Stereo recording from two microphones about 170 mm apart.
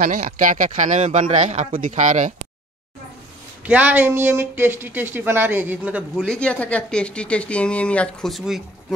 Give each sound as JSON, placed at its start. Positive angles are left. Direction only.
{"t": 0.0, "sound": "speech", "side_deg": -55}
{"t": 3.6, "sound": "speech", "side_deg": -10}
{"t": 6.2, "sound": "speech", "side_deg": 5}